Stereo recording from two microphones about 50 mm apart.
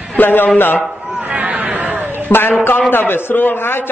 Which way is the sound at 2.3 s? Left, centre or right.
Left.